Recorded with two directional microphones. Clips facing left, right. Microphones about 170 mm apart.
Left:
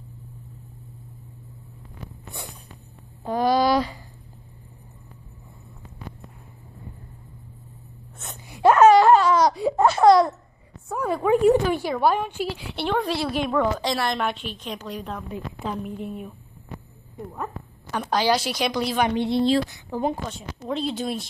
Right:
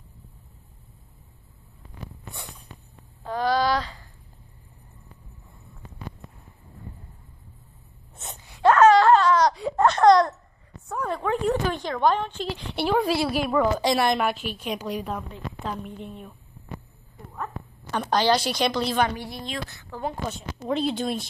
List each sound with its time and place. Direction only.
3.3 s a woman's voice: 15° left (ahead or behind)
8.5 s a sound: 10° left (ahead or behind)
10.9 s a woman's voice: 5° left (ahead or behind)
12.7 s a woman's voice: 5° right (ahead or behind)
15.3 s a woman's voice: 5° left (ahead or behind)
17.9 s a woman's voice: 5° left (ahead or behind)
19.1 s a woman's voice: 25° left (ahead or behind)
19.7 s a woman's voice: 15° left (ahead or behind)
20.2 s a woman's voice: centre (ahead or behind)